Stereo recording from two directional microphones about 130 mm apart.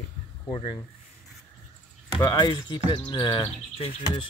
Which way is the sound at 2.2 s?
35° left (ahead or behind).